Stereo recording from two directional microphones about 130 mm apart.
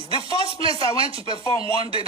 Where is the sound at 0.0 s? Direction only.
40° right (ahead or behind).